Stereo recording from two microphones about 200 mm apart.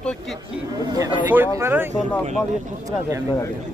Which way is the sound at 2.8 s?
15° right (ahead or behind).